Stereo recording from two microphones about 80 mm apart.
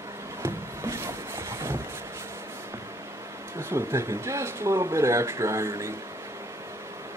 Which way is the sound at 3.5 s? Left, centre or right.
Right.